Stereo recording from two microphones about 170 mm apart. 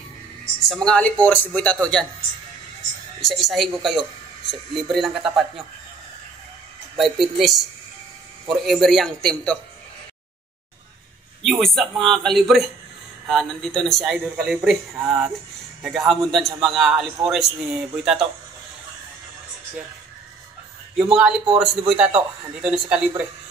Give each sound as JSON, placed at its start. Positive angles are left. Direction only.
{"t": 0.8, "sound": "speech", "side_deg": 5}
{"t": 3.2, "sound": "speech", "side_deg": 0}
{"t": 4.9, "sound": "speech", "side_deg": 0}
{"t": 7.0, "sound": "speech", "side_deg": 0}
{"t": 11.4, "sound": "speech", "side_deg": 0}
{"t": 20.9, "sound": "speech", "side_deg": 0}